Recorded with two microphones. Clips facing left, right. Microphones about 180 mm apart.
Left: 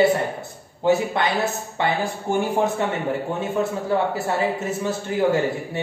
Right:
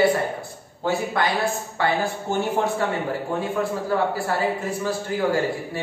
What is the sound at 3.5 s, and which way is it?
A man's voice, 20° left (ahead or behind).